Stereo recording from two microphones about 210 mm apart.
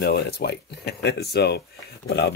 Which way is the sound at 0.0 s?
45° left (ahead or behind).